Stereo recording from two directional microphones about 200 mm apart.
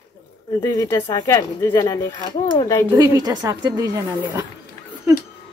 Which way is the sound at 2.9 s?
15° right (ahead or behind).